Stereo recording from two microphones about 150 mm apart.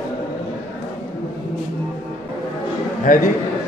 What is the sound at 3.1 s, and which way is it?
Speech, 60° left (ahead or behind).